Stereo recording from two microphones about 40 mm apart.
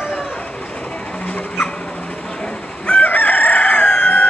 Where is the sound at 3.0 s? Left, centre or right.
Left.